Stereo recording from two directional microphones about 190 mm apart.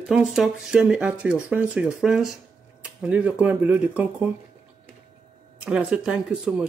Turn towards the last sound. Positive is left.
turn(degrees=-5)  # may be behind; listen again after turning